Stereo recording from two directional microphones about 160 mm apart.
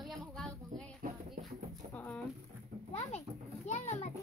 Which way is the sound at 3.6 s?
45° left (ahead or behind).